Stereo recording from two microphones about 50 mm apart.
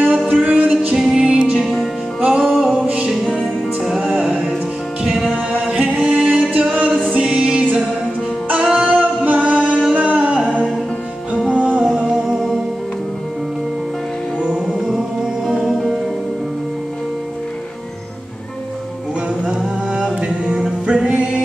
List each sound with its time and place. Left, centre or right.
0.3 s music: right
0.9 s music: centre
1.2 s music: right
1.6 s music: centre
2.2 s music: right
5.0 s music: centre
5.6 s a capella: right
7.2 s music: centre
8.7 s a capella: right
9.9 s music: right
15.4 s music: centre
20.2 s a capella: centre